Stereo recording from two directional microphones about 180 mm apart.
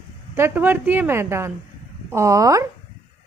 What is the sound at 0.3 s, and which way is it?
A woman's voice, 10° right (ahead or behind).